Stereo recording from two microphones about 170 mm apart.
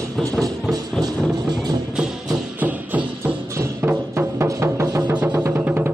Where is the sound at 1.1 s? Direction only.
Centre (ahead or behind).